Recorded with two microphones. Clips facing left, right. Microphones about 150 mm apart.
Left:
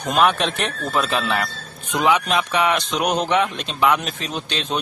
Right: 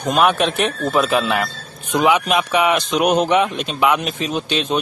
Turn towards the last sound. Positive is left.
turn(degrees=-10)  # may be behind; listen again after turning